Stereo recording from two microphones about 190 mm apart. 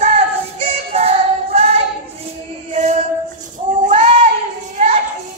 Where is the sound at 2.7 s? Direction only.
40° right (ahead or behind).